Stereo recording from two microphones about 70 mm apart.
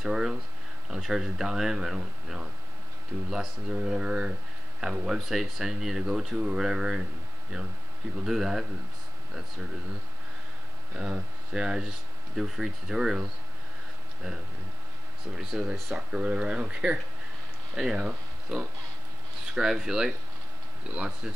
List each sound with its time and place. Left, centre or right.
0.0 s speech: centre
8.2 s speech: centre
11.0 s speech: centre
15.3 s speech: centre